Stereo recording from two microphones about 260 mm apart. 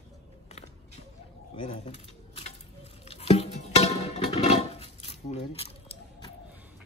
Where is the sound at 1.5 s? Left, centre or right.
Left.